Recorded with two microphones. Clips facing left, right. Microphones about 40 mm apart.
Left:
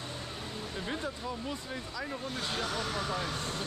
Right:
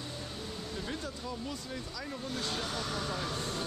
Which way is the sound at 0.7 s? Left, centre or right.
Left.